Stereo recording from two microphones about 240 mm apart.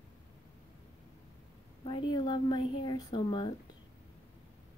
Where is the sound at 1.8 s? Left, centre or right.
Centre.